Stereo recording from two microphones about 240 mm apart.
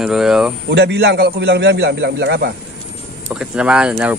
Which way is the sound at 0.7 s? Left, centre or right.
Right.